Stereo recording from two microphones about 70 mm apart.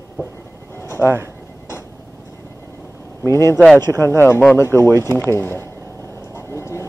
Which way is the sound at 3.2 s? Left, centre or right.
Left.